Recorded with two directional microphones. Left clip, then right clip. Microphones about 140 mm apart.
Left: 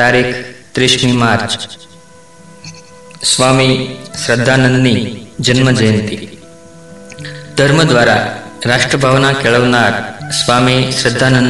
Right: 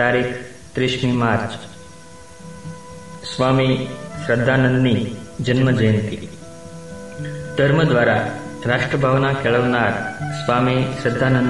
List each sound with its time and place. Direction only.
0.0 s a man's voice: 50° left (ahead or behind)
3.3 s a man's voice: 50° left (ahead or behind)
7.2 s a man's voice: 50° left (ahead or behind)